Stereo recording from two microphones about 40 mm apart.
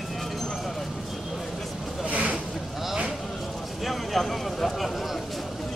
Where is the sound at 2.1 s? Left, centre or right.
Right.